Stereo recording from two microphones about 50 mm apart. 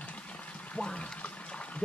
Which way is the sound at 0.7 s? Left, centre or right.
Centre.